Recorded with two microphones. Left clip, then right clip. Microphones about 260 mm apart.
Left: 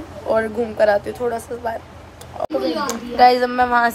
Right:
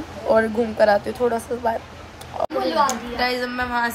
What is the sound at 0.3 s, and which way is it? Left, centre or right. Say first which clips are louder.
A woman's voice: right 1 dB; centre.